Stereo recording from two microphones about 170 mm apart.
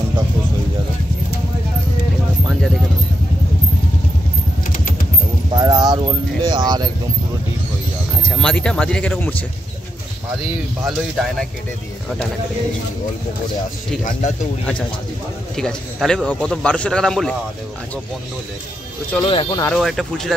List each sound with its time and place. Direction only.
5.5 s speech: 25° right (ahead or behind)
8.2 s speech: 5° left (ahead or behind)
10.9 s a man's voice: centre (ahead or behind)
15.5 s a man's voice: 5° left (ahead or behind)
19.2 s speech: 30° left (ahead or behind)
19.7 s a man's voice: centre (ahead or behind)